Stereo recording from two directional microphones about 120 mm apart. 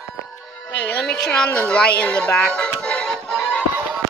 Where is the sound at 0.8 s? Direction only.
5° left (ahead or behind).